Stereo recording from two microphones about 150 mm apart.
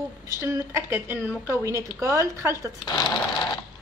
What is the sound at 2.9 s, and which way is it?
Speech, 25° left (ahead or behind).